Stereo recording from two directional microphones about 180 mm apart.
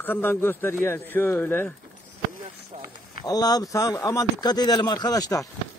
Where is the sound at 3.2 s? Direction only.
20° left (ahead or behind).